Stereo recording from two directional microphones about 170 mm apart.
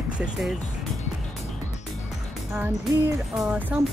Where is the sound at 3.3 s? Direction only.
10° right (ahead or behind).